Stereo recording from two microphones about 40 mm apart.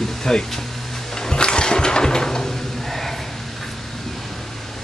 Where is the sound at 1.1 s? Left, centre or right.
Centre.